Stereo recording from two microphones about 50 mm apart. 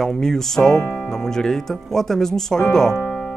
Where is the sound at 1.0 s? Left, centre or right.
Centre.